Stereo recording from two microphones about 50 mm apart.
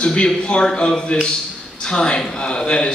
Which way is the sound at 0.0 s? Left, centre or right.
Centre.